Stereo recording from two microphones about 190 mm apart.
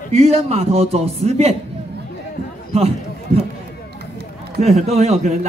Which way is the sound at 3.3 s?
30° right (ahead or behind).